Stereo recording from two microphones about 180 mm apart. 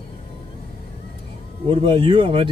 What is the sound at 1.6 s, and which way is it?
Speech, 30° right (ahead or behind).